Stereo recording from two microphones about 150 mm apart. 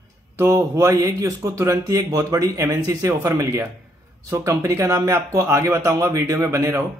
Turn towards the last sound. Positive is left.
turn(degrees=-20)  # may be behind; listen again after turning